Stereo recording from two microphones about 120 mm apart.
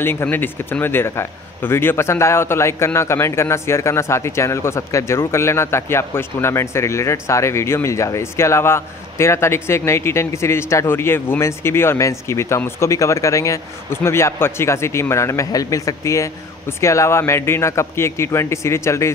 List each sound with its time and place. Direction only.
0.0 s speech: 20° left (ahead or behind)